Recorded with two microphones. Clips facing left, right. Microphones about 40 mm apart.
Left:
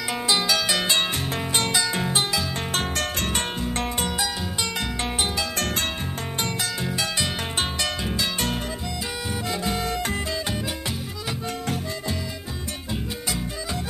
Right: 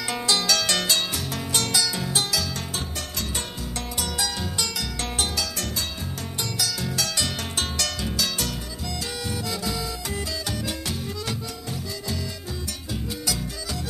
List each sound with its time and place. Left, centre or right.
0.1 s harp: centre
0.8 s music: left
2.7 s music: left
3.6 s music: left
6.9 s music: left
9.5 s music: left